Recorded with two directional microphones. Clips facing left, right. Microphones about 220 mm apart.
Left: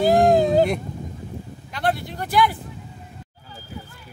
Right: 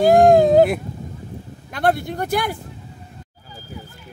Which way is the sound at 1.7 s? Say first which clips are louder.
Right 5 dB; 50° right (ahead or behind).